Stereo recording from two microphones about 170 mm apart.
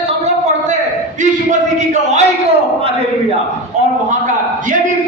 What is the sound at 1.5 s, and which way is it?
Speech, 45° right (ahead or behind).